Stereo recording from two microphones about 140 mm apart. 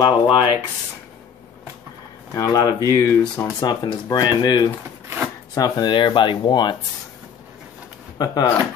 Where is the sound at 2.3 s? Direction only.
25° left (ahead or behind).